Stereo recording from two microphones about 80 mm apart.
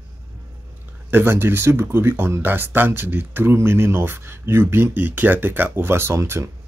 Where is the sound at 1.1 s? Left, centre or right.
Right.